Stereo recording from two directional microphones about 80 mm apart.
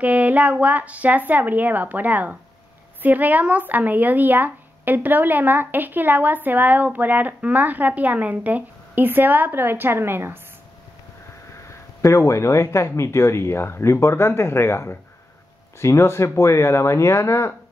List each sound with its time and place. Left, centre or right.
0.0 s speech: centre
12.0 s speech: left